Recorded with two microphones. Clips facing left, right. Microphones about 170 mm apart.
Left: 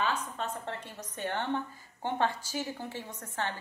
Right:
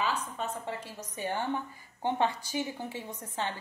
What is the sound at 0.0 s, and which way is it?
A woman's voice, 5° right (ahead or behind).